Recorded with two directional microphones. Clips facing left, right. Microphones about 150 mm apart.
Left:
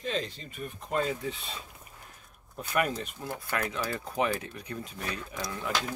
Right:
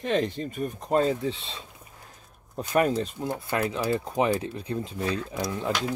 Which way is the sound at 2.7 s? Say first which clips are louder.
Right 6 dB; 35° right (ahead or behind).